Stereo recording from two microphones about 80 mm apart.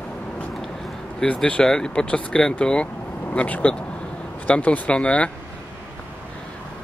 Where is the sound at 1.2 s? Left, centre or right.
Centre.